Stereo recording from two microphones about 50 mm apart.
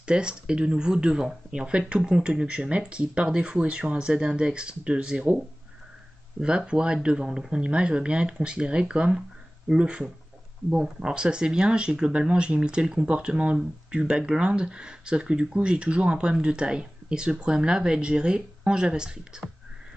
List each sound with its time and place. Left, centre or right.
0.0 s speech: centre
6.4 s speech: centre